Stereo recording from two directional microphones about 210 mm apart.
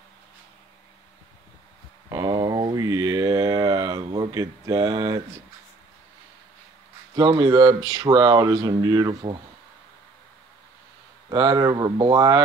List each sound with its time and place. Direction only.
2.0 s a sound: 15° right (ahead or behind)
7.5 s speech: 20° right (ahead or behind)
11.2 s speech: 20° right (ahead or behind)